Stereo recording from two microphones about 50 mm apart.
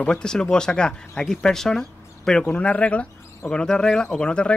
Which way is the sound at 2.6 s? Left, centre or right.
Left.